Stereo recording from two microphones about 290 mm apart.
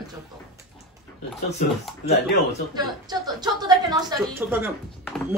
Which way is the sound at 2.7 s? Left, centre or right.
Centre.